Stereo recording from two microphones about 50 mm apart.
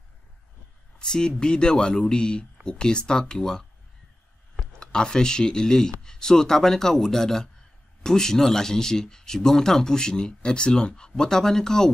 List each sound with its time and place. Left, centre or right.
0.9 s speech: centre